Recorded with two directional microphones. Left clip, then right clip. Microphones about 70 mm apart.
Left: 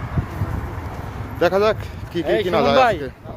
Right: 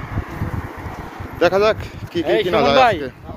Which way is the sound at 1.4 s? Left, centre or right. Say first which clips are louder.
Right 2 dB; left.